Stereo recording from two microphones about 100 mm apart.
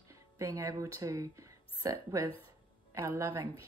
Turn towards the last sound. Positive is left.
turn(degrees=-25)  # may be behind; listen again after turning